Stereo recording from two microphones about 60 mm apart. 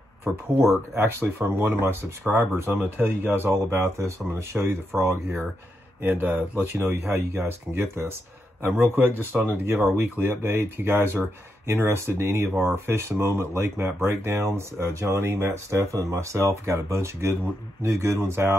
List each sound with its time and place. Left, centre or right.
0.7 s speech: right
2.7 s speech: right
3.5 s speech: right
6.0 s speech: right
6.7 s speech: right